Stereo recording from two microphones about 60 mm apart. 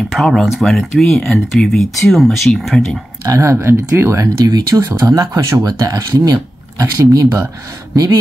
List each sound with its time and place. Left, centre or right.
0.1 s speech: centre
3.3 s speech: right
3.5 s speech: right
4.5 s speech: right
4.9 s speech: right